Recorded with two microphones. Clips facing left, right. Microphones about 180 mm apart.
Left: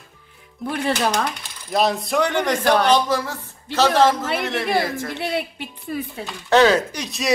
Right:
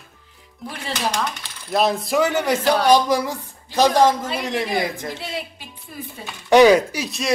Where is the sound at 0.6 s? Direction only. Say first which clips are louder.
Left 5 dB; 55° left (ahead or behind).